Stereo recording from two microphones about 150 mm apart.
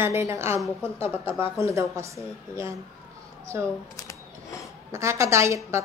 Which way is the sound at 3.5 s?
20° right (ahead or behind).